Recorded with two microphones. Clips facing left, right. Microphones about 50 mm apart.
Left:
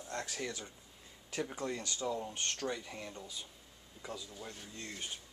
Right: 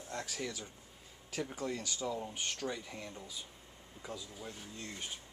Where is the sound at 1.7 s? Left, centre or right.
Centre.